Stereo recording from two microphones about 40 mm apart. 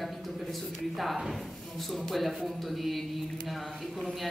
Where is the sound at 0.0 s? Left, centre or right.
Centre.